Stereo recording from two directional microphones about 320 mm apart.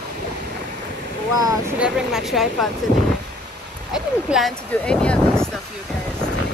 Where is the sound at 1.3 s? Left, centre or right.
Centre.